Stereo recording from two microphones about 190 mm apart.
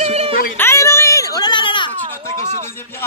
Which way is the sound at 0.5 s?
15° left (ahead or behind).